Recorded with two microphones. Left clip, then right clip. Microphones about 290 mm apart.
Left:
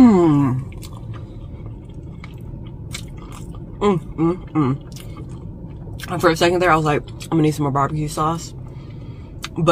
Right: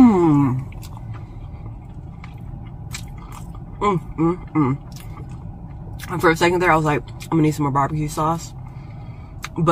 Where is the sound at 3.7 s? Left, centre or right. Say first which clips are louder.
Left 1 dB; centre.